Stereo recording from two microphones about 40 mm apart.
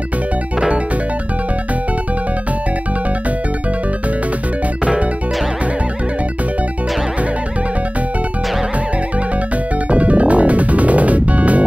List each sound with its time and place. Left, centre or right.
9.8 s music: right